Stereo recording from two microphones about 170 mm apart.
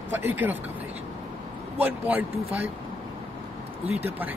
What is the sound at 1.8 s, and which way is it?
Speech, 10° right (ahead or behind).